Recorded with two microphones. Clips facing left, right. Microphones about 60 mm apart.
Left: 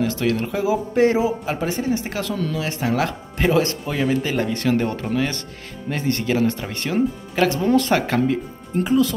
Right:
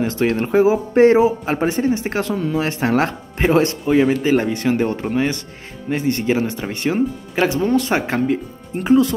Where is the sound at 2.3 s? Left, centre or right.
Right.